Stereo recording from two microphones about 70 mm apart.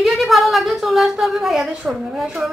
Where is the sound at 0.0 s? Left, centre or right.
Centre.